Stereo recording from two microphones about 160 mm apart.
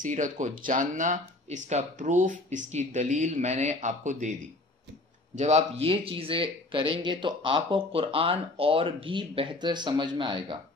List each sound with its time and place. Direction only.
0.0 s speech: 50° right (ahead or behind); by 10.6 s 30° right (ahead or behind)